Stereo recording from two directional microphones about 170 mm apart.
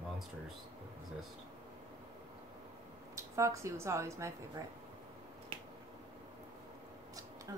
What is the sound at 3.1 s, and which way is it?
Speech, 20° right (ahead or behind).